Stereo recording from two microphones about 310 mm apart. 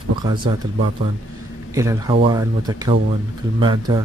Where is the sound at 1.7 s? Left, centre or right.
Centre.